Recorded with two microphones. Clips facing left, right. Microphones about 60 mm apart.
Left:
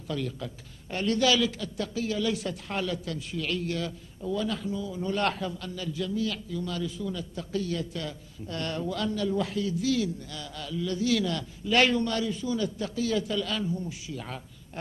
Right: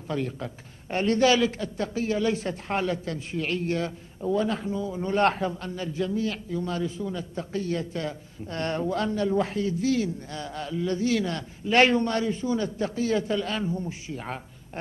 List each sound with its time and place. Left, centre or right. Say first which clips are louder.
0.1 s a man's voice: right 3 dB; right